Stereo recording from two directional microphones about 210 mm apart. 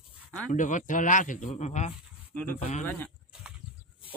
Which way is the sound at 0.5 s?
35° left (ahead or behind).